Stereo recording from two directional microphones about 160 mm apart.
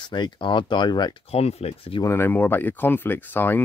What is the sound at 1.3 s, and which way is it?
Speech, 40° left (ahead or behind).